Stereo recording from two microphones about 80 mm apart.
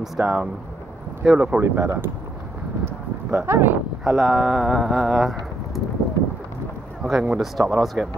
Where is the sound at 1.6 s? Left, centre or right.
Right.